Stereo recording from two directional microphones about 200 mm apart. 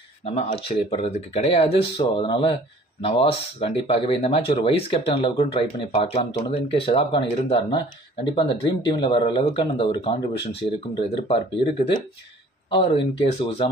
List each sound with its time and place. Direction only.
0.2 s speech: 30° left (ahead or behind)